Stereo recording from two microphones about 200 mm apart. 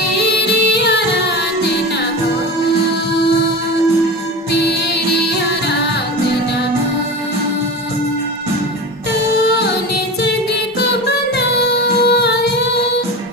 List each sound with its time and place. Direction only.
0.7 s music: 55° left (ahead or behind)
4.5 s music: 55° left (ahead or behind)
10.8 s music: 55° left (ahead or behind)
12.0 s singing: 55° left (ahead or behind)